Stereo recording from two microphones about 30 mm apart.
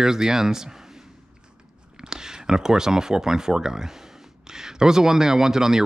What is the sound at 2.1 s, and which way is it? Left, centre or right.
Speech, right.